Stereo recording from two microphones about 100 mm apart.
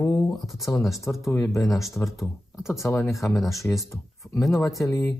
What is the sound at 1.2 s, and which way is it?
Speech, 30° left (ahead or behind).